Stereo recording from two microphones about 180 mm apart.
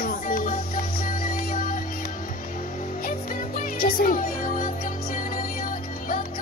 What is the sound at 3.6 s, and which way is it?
Music, 55° left (ahead or behind).